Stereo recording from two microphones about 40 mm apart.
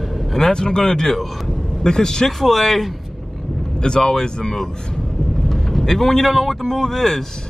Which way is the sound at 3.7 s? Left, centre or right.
Left.